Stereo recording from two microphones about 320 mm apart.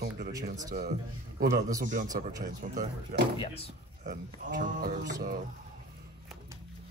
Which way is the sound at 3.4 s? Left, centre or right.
Centre.